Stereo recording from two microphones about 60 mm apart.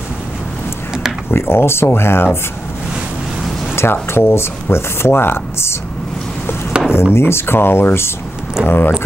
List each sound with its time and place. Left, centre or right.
1.3 s speech: left
3.7 s speech: left
6.7 s chop: centre
7.2 s speech: left